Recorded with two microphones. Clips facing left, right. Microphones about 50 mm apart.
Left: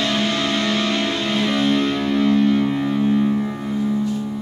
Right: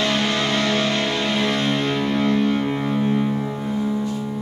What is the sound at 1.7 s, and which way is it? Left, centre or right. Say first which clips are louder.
Music: left 2 dB; centre.